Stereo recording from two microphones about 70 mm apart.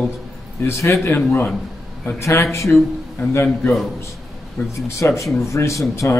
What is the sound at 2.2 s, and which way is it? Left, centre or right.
Speech, left.